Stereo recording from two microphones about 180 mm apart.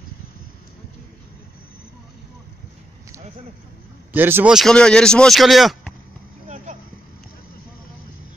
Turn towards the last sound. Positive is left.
turn(degrees=-40)  # may be behind; listen again after turning